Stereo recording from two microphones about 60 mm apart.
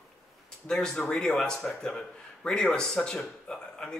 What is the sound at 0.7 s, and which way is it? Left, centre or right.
A man's voice, centre.